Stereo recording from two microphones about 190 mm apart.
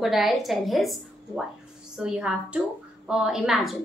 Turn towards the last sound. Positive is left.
turn(degrees=0)  # may be behind; listen again after turning